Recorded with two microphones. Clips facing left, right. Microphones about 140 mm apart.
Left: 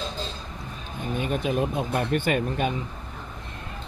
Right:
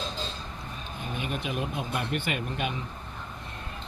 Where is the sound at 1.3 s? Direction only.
35° left (ahead or behind).